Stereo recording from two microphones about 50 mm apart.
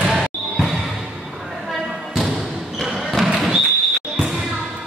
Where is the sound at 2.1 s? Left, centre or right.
Centre.